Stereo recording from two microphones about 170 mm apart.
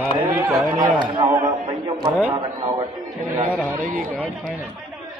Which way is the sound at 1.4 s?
25° right (ahead or behind).